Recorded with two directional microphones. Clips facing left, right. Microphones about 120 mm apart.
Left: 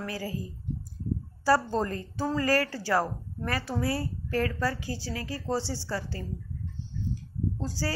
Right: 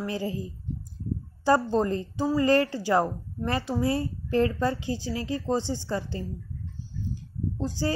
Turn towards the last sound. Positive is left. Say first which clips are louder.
# right 4 dB
turn(degrees=-20)  # may be behind; listen again after turning